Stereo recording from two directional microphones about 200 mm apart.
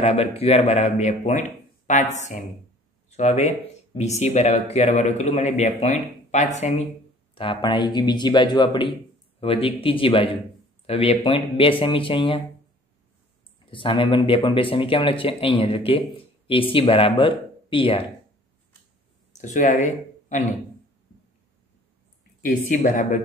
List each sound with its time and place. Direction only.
0.0 s speech: 30° left (ahead or behind)
13.7 s speech: 25° left (ahead or behind)
19.3 s speech: 40° left (ahead or behind)
22.4 s speech: 40° left (ahead or behind)